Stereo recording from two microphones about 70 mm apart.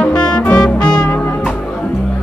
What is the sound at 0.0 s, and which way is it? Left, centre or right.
Music, centre.